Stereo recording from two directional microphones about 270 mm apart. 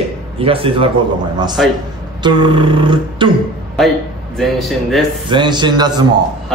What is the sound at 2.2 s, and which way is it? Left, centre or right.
A man's voice, centre.